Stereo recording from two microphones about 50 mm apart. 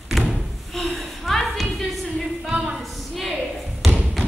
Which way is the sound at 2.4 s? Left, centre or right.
Centre.